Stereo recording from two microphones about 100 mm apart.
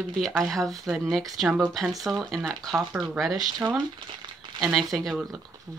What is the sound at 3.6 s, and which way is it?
Speech, 25° right (ahead or behind).